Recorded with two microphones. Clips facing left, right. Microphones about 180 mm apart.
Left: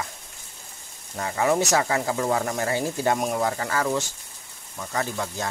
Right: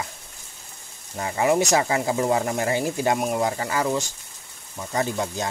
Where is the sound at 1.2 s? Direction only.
20° right (ahead or behind).